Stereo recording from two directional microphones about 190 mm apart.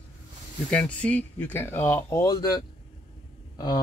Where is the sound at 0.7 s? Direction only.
5° left (ahead or behind).